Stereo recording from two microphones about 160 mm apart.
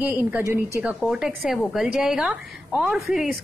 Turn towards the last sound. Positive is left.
turn(degrees=-5)  # may be behind; listen again after turning